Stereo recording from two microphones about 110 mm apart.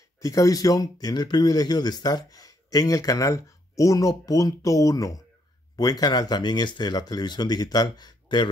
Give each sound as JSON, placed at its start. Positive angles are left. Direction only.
{"t": 0.2, "sound": "speech", "side_deg": 30}